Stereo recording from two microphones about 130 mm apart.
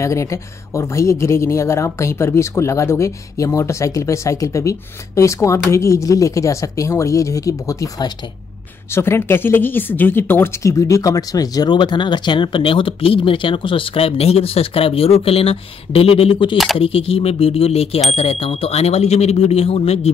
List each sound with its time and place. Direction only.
0.0 s speech: 25° left (ahead or behind); by 20.1 s 50° left (ahead or behind)